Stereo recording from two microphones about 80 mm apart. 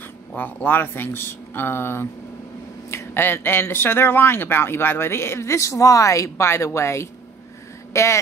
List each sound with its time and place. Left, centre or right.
0.4 s speech: left